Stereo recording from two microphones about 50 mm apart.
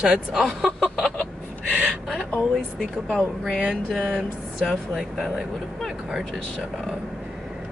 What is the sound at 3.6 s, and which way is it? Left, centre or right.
Speech, centre.